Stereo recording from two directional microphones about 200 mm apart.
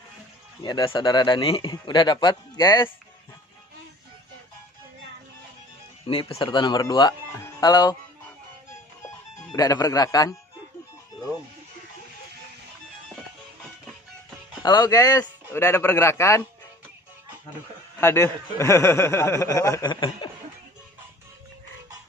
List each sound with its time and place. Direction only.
0.6 s a man's voice: 20° left (ahead or behind)
6.0 s a man's voice: 25° left (ahead or behind)
9.5 s a man's voice: 20° left (ahead or behind)
14.6 s a man's voice: 20° left (ahead or behind)
18.0 s a man's voice: 15° left (ahead or behind)